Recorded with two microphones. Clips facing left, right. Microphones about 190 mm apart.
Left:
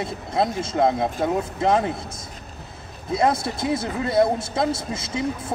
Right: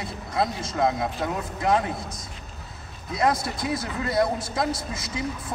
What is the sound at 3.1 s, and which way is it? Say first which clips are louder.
Speech: left 3 dB; 25° left (ahead or behind).